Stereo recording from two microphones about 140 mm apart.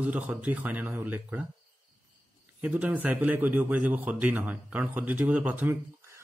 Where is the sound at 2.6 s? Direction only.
10° right (ahead or behind).